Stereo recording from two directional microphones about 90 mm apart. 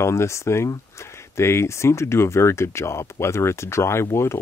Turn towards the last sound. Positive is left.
turn(degrees=30)  # may be behind; listen again after turning